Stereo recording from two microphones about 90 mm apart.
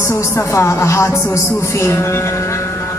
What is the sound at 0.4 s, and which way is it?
Speech, 30° left (ahead or behind).